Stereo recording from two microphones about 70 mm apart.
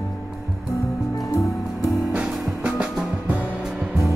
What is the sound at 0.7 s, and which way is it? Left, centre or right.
Music, left.